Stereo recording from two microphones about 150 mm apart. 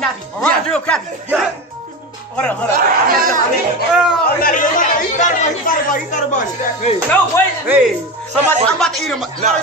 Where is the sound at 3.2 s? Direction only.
65° right (ahead or behind).